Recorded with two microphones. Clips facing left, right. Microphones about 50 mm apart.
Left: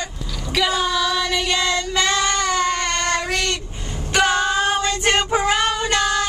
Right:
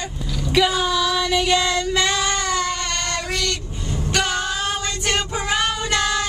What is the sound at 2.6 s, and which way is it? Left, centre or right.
Child singing, left.